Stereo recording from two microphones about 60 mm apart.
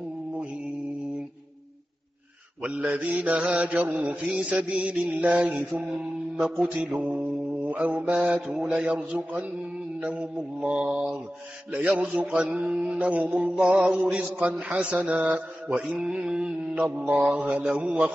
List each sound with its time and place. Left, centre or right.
2.6 s mantra: right
8.5 s music: centre
9.9 s mantra: right
10.7 s music: centre
11.7 s mantra: right
12.6 s music: centre
12.9 s mantra: right
16.0 s music: centre
17.0 s mantra: right